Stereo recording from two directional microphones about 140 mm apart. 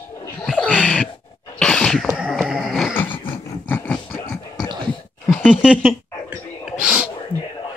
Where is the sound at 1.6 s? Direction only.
5° left (ahead or behind).